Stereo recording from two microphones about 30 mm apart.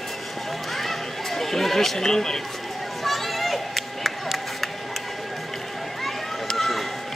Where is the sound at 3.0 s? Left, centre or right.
Centre.